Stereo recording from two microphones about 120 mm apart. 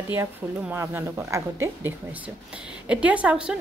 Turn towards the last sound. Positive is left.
turn(degrees=-10)  # may be behind; listen again after turning